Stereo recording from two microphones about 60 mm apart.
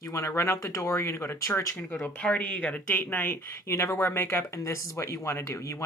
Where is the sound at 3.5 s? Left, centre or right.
Left.